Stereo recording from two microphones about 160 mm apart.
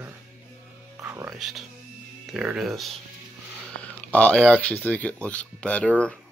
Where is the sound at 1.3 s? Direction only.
Centre (ahead or behind).